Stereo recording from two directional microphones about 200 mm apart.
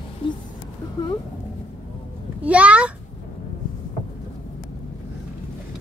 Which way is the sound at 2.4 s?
5° right (ahead or behind).